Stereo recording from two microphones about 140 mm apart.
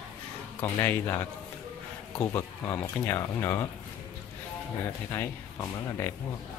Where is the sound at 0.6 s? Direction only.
15° left (ahead or behind).